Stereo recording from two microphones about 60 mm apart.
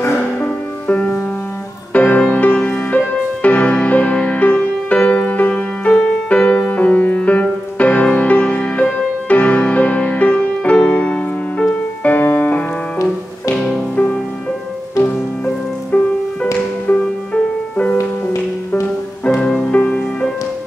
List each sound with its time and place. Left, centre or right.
0.4 s music: left
15.0 s music: left
16.9 s music: left
17.3 s music: centre
19.2 s music: centre